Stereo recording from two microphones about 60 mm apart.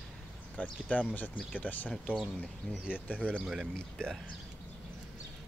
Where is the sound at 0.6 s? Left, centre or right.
Left.